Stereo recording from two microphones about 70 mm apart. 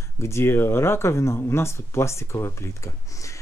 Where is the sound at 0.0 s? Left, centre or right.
Left.